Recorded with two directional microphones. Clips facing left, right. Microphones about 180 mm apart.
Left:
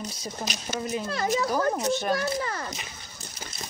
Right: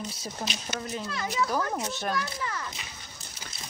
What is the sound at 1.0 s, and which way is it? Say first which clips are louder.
A child's voice: left 3 dB; 40° left (ahead or behind).